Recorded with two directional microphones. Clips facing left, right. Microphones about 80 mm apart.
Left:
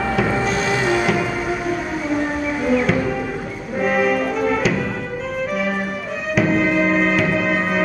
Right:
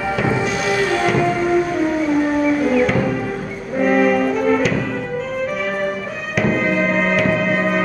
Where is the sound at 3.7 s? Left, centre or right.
Centre.